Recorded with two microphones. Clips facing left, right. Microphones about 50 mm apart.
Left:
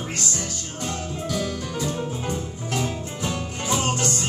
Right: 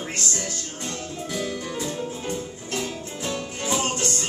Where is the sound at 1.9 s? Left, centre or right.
Centre.